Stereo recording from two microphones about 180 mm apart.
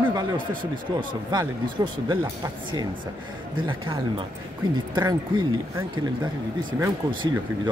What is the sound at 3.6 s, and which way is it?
Speech, 25° right (ahead or behind).